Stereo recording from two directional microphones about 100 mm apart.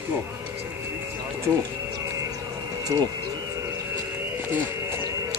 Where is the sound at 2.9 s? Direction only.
35° right (ahead or behind).